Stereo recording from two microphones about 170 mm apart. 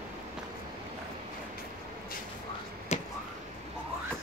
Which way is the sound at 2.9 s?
40° left (ahead or behind).